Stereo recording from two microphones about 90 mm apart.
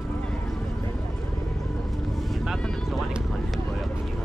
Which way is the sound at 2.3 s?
5° left (ahead or behind).